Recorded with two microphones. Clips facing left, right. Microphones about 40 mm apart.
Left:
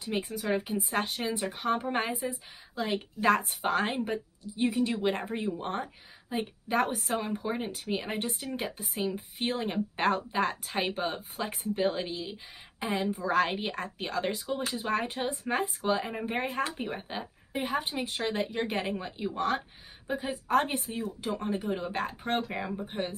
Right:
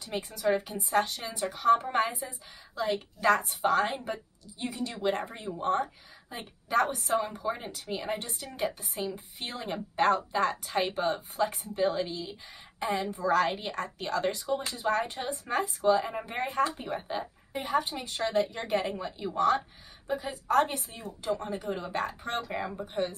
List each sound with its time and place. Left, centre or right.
0.0 s a woman's voice: centre
1.0 s speech: left
1.7 s a woman's voice: centre